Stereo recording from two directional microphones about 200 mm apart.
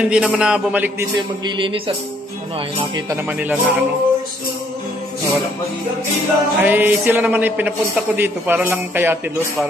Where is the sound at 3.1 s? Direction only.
10° right (ahead or behind).